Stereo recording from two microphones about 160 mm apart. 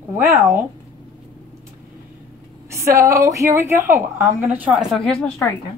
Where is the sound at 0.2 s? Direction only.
15° right (ahead or behind).